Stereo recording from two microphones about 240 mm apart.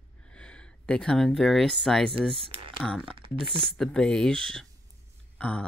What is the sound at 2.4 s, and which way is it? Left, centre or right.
Speech, right.